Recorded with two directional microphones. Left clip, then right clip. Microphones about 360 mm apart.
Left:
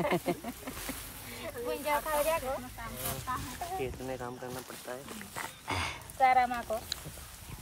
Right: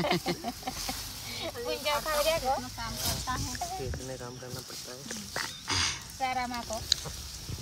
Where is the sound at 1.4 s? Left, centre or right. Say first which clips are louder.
Right 2 dB; centre.